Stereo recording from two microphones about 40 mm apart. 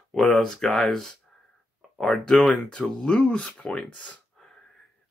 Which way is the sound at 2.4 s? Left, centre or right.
Left.